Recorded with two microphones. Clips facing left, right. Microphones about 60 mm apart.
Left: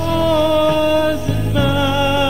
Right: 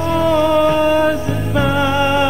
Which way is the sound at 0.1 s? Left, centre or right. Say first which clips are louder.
Right 1 dB; right.